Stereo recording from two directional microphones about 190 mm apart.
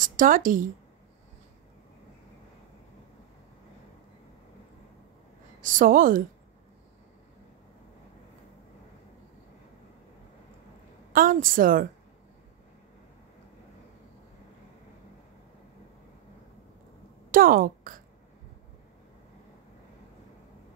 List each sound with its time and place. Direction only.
0.0 s speech: 45° right (ahead or behind)
5.6 s speech: 45° right (ahead or behind)
11.1 s speech: 45° right (ahead or behind)
17.3 s a woman's voice: 50° right (ahead or behind)